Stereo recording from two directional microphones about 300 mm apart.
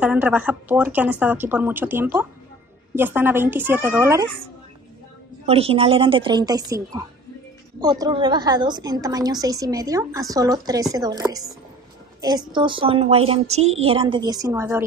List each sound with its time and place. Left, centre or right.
0.0 s a woman's voice: centre
5.5 s a woman's voice: centre